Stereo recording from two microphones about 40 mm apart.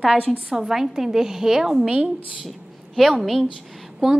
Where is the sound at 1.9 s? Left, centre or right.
Right.